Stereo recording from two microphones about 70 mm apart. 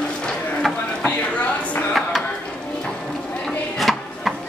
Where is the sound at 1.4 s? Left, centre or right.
Centre.